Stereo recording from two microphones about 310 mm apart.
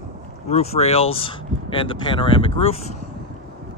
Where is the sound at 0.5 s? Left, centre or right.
Centre.